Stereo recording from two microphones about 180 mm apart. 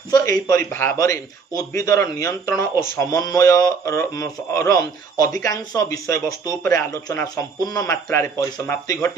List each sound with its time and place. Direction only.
0.1 s speech: 20° left (ahead or behind)